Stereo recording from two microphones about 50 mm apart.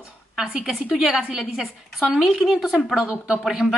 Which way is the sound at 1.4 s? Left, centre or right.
Centre.